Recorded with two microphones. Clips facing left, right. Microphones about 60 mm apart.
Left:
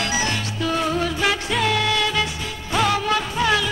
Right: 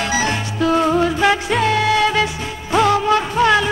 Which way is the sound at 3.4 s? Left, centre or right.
Right.